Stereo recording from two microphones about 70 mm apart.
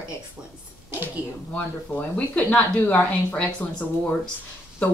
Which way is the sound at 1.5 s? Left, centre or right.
Left.